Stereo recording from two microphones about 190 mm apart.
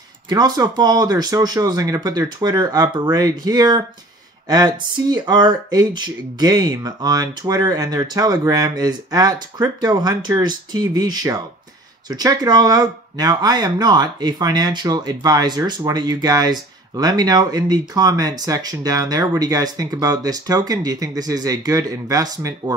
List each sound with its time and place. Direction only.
0.3 s speech: 20° right (ahead or behind)